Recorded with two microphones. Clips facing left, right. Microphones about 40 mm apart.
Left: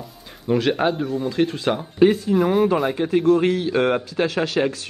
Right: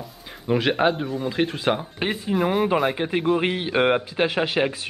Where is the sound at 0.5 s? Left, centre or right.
Centre.